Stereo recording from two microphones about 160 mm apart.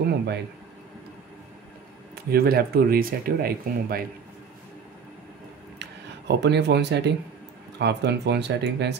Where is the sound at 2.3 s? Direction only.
70° right (ahead or behind).